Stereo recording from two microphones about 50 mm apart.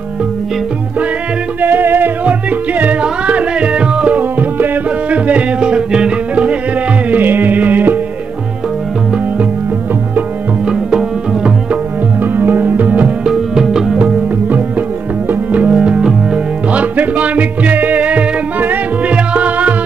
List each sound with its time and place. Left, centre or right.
1.6 s music: right
2.8 s music: right
4.2 s music: right
7.1 s music: right
10.7 s tabla: centre
12.2 s music: right
13.2 s music: centre
15.5 s music: right
16.7 s music: right